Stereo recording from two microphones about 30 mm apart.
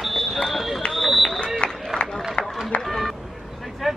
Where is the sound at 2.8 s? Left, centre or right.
Centre.